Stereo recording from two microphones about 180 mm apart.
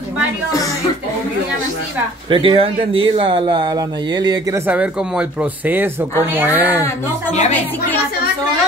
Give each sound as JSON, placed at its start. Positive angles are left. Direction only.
{"t": 2.2, "sound": "speech", "side_deg": -30}
{"t": 4.6, "sound": "speech", "side_deg": -5}